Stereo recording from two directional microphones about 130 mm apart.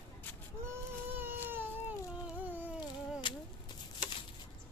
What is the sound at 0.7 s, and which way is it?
Baby cry, 15° right (ahead or behind).